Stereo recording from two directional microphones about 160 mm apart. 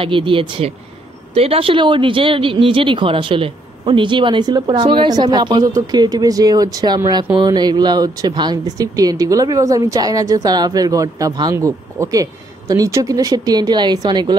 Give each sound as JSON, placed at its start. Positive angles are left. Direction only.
{"t": 0.0, "sound": "speech", "side_deg": -30}